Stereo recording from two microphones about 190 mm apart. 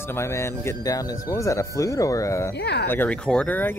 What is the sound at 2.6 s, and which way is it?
Speech, 60° left (ahead or behind).